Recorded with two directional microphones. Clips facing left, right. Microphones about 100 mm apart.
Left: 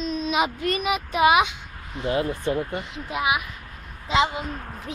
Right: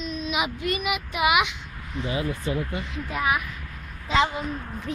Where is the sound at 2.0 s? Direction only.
60° left (ahead or behind).